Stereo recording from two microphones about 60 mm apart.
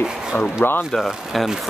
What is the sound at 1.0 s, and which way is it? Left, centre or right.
Speech, centre.